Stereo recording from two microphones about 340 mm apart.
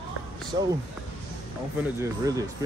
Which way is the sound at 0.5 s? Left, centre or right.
Right.